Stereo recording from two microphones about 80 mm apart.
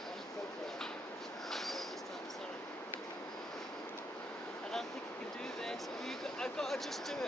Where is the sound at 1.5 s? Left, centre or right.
Centre.